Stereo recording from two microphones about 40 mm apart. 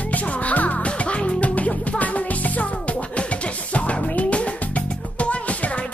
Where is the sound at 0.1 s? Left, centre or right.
Left.